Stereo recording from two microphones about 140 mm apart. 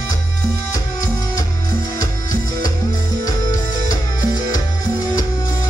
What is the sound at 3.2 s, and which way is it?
Music, 30° left (ahead or behind).